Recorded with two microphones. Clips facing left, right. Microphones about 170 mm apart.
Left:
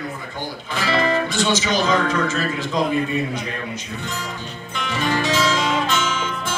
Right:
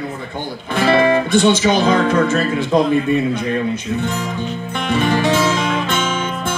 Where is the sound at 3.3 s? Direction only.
60° right (ahead or behind).